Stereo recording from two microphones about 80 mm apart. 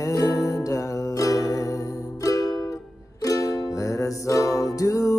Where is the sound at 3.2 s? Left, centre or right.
Left.